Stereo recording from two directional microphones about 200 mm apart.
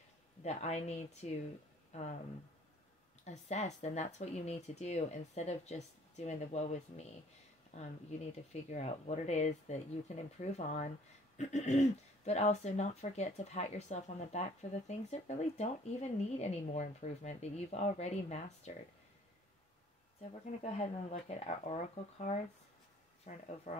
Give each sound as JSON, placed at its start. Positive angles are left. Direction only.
{"t": 0.4, "sound": "speech", "side_deg": 35}
{"t": 3.3, "sound": "speech", "side_deg": 35}
{"t": 20.2, "sound": "speech", "side_deg": 30}